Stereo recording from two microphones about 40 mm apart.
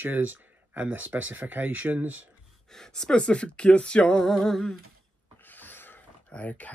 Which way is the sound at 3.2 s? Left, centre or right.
Left.